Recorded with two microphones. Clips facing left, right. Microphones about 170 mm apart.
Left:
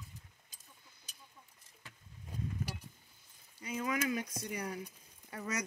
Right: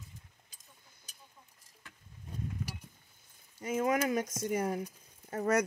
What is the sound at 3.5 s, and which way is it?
Speech, 45° right (ahead or behind).